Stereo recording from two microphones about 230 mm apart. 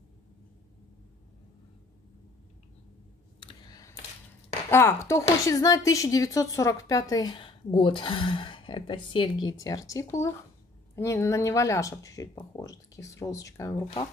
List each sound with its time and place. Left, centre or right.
3.3 s clicking: centre
4.6 s a woman's voice: centre